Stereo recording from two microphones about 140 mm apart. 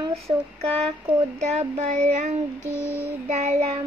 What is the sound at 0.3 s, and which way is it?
Speech, 40° right (ahead or behind).